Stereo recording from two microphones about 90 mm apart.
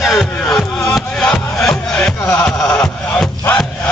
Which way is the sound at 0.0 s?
Centre (ahead or behind).